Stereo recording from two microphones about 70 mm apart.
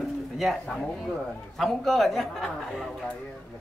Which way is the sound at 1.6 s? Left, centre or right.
Centre.